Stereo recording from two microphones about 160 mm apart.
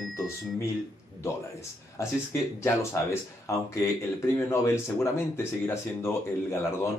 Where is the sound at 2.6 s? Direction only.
15° left (ahead or behind).